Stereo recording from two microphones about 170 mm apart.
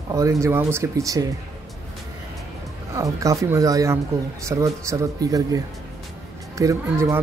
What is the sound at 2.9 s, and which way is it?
Speech, 20° right (ahead or behind).